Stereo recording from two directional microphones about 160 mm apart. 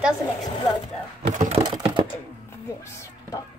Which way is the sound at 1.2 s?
45° right (ahead or behind).